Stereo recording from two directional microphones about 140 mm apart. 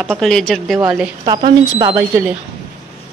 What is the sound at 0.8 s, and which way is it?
Speech, 10° right (ahead or behind).